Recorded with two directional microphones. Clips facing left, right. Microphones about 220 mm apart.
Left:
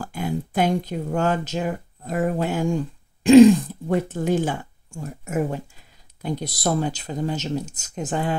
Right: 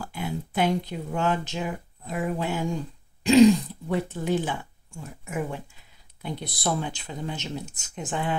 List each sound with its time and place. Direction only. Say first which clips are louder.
0.0 s speech: left 5 dB; 45° left (ahead or behind)